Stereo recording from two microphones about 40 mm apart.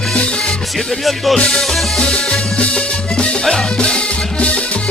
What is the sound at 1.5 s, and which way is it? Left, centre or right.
Music, centre.